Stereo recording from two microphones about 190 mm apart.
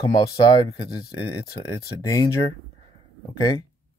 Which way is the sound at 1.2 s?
25° left (ahead or behind).